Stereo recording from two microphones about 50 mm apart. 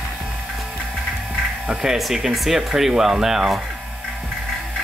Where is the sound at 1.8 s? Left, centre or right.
Centre.